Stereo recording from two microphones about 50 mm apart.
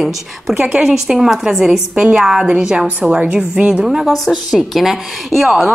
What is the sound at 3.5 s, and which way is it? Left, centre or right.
Speech, right.